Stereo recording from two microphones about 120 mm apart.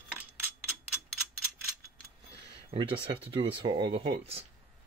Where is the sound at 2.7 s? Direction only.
45° right (ahead or behind).